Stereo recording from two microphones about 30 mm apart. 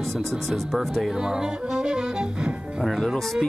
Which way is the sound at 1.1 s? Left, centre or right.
Right.